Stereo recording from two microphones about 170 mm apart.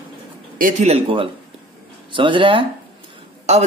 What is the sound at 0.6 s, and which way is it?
Speech, 45° right (ahead or behind).